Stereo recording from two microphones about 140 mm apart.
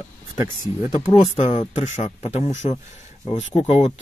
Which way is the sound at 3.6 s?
45° left (ahead or behind).